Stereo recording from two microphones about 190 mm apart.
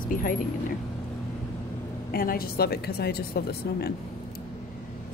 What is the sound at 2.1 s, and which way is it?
A woman's voice, 50° left (ahead or behind).